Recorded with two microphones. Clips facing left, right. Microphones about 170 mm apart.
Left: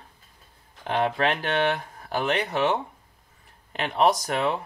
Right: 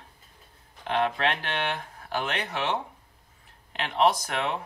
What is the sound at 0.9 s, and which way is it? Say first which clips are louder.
Speech: left 2 dB; 45° left (ahead or behind).